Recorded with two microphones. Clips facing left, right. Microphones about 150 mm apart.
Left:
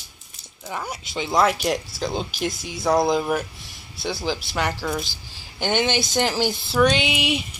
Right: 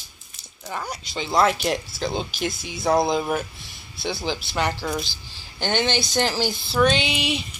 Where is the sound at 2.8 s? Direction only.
Centre (ahead or behind).